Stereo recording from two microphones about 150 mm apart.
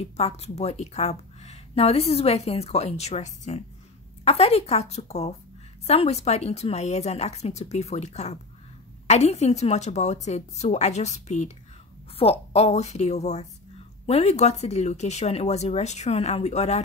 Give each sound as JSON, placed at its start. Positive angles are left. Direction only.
{"t": 0.0, "sound": "a woman's voice", "side_deg": 45}